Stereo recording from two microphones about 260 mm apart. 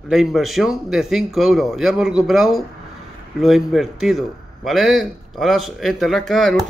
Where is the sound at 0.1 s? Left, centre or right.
Centre.